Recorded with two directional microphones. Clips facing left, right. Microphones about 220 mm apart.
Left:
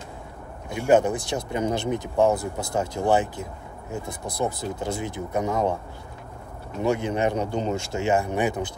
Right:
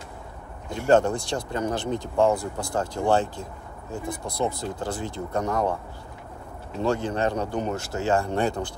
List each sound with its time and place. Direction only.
0.7 s speech: 15° left (ahead or behind)
6.8 s speech: 20° left (ahead or behind)